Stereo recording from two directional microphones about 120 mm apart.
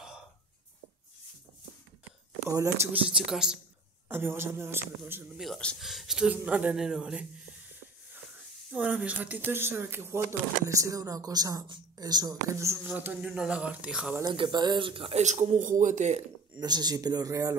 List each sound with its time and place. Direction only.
2.5 s speech: 25° right (ahead or behind)
3.1 s speech: 5° right (ahead or behind)
4.1 s speech: 20° right (ahead or behind)
5.4 s speech: 5° left (ahead or behind)
8.7 s speech: 10° right (ahead or behind); by 12.4 s 35° right (ahead or behind)
12.9 s speech: 15° right (ahead or behind)
14.3 s speech: 40° right (ahead or behind)
15.1 s speech: 75° right (ahead or behind)
16.5 s speech: 35° right (ahead or behind)